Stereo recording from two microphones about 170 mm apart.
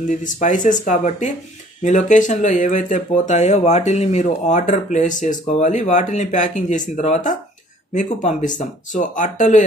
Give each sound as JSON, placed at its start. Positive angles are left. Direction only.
{"t": 0.1, "sound": "speech", "side_deg": 45}